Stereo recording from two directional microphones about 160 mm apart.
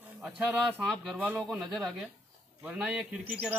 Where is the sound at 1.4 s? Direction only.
Centre (ahead or behind).